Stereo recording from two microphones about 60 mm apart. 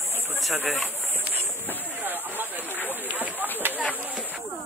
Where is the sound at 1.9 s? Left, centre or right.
Right.